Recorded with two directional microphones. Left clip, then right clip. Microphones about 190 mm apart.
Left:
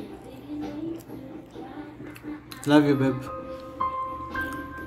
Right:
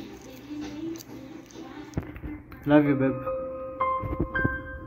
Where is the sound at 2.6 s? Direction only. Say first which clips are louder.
Left 1 dB; centre (ahead or behind).